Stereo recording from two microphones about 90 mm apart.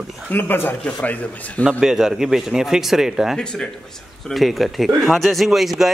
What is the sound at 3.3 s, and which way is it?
A man's voice, 10° left (ahead or behind).